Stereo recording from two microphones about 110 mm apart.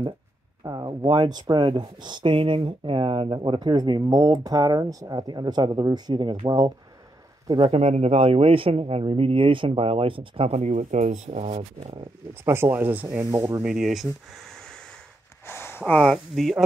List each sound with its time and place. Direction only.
0.7 s speech: 35° right (ahead or behind)
7.6 s speech: 65° right (ahead or behind)
10.5 s speech: 90° right
12.4 s speech: 20° right (ahead or behind); by 14.0 s 5° right (ahead or behind)
15.4 s a sound: 20° left (ahead or behind)
15.8 s speech: 10° left (ahead or behind)